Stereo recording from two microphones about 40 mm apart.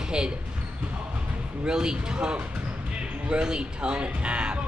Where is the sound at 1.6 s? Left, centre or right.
Centre.